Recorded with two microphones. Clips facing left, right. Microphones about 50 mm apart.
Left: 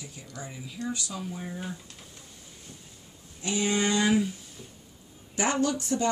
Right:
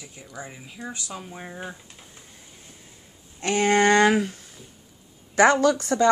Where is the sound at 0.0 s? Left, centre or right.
Right.